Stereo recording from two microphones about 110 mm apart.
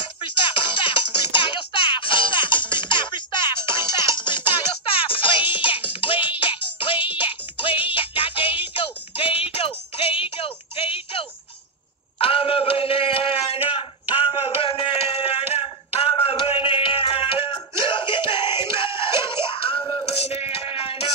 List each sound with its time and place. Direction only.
0.2 s music: 50° left (ahead or behind)
12.2 s a sound: 60° left (ahead or behind)
18.7 s music: 50° left (ahead or behind)